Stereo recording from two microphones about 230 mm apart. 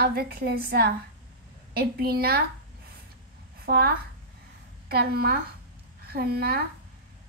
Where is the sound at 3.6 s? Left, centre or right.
Right.